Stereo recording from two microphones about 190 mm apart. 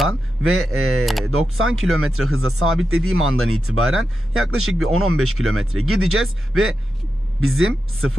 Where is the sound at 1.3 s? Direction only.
90° right.